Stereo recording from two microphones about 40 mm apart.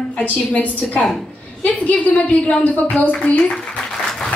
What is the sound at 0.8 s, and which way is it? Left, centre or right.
Speech, centre.